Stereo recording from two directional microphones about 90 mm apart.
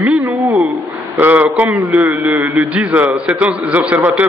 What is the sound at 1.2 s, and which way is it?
A man's voice, 20° right (ahead or behind).